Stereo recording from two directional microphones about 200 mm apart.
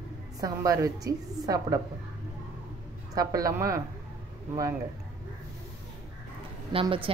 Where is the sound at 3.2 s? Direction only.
15° right (ahead or behind).